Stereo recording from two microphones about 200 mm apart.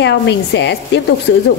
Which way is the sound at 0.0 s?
60° left (ahead or behind).